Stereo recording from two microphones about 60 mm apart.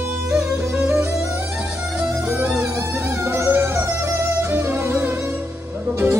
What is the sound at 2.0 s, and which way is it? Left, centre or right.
Music, right.